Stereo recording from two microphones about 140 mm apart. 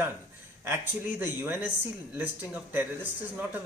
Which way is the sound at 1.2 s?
15° right (ahead or behind).